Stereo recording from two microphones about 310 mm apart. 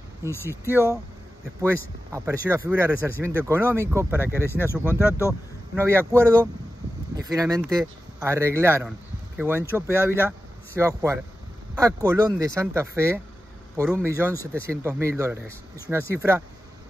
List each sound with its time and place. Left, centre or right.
0.3 s speech: centre
1.6 s speech: centre
4.2 s speech: centre
6.1 s speech: centre